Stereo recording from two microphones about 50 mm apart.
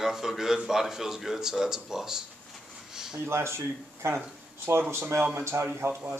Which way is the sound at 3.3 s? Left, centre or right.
Right.